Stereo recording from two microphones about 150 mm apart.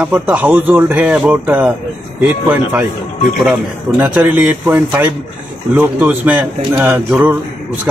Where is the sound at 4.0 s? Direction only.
10° right (ahead or behind).